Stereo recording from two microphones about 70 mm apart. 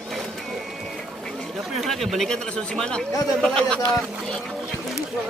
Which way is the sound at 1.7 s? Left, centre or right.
Centre.